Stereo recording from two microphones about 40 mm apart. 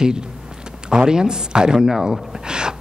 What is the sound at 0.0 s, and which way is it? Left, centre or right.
A man's voice, centre.